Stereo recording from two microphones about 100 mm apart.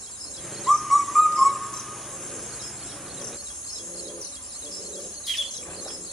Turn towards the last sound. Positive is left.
turn(degrees=0)  # may be behind; listen again after turning